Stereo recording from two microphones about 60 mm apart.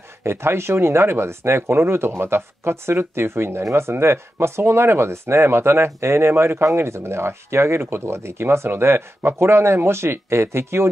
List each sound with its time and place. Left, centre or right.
0.2 s speech: right